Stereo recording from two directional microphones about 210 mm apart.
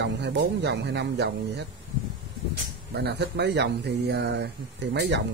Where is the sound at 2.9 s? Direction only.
50° right (ahead or behind).